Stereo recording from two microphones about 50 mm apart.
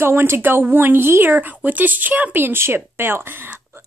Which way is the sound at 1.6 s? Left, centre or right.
Right.